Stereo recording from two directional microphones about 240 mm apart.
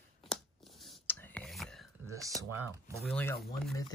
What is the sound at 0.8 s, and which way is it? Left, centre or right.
Whispering, centre.